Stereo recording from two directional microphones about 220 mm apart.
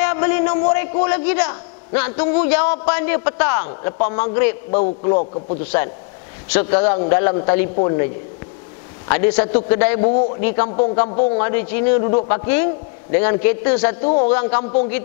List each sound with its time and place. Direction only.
0.0 s a sound: 10° left (ahead or behind)
0.7 s a man's voice: 10° left (ahead or behind)
4.6 s a man's voice: 35° left (ahead or behind)
5.6 s a man's voice: 10° left (ahead or behind)
11.1 s a man's voice: 30° left (ahead or behind)
11.3 s a man's voice: 15° left (ahead or behind)